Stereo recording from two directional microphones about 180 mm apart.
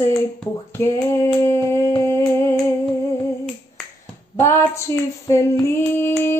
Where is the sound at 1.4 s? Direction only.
15° left (ahead or behind).